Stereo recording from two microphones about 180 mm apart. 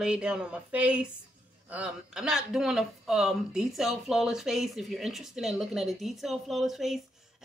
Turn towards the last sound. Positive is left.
turn(degrees=0)  # may be behind; listen again after turning